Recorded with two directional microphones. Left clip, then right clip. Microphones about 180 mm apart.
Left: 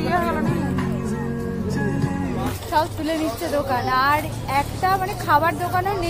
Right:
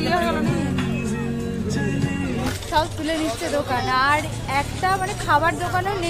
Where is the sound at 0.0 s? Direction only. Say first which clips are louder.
Even; 50° right (ahead or behind).